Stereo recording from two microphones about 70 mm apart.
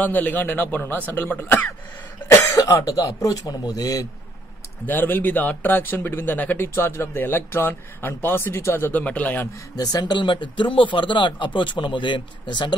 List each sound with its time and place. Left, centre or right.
0.0 s speech: left
2.5 s speech: left
4.8 s speech: left
9.8 s speech: left